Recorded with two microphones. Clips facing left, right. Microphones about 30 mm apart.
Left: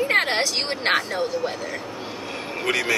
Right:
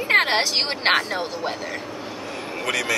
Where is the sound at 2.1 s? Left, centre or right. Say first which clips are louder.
Even; centre.